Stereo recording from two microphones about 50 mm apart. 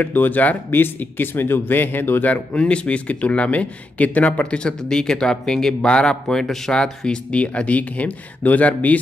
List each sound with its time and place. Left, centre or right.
0.0 s speech: left
0.7 s speech: left
4.8 s speech: centre; by 9.0 s left